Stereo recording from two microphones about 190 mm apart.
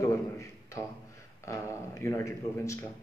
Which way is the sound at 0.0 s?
15° left (ahead or behind).